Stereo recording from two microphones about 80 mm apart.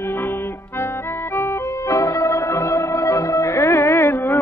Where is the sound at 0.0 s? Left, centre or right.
Left.